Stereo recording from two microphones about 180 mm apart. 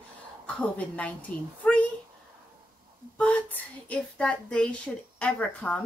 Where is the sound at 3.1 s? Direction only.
5° left (ahead or behind).